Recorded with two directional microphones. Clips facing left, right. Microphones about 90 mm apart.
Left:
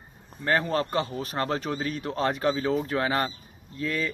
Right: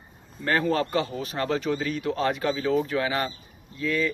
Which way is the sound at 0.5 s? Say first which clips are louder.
Right 1 dB; 30° left (ahead or behind).